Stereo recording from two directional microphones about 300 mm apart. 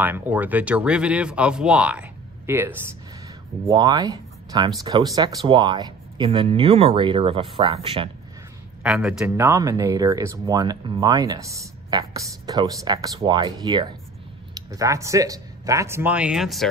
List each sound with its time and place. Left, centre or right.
0.0 s speech: centre
8.8 s speech: centre